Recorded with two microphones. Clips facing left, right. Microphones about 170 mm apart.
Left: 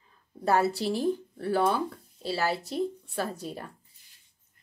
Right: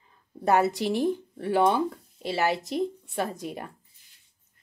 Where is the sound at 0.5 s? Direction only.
20° right (ahead or behind).